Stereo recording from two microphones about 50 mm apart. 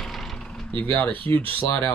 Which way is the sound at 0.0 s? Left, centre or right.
Centre.